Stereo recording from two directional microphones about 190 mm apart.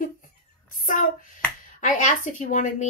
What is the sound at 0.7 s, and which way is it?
A woman's voice, 45° left (ahead or behind).